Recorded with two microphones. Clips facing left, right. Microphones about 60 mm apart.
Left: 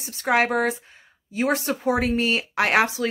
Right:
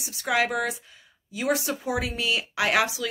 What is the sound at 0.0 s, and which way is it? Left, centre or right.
Speech, left.